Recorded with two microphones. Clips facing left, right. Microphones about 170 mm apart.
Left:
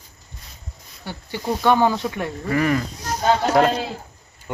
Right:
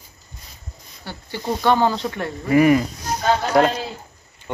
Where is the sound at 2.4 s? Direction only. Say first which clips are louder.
Right 6 dB; 15° right (ahead or behind).